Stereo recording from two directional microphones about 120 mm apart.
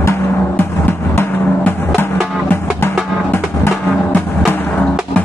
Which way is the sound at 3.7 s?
15° left (ahead or behind).